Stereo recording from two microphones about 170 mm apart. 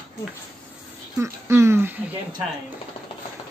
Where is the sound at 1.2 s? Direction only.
15° right (ahead or behind).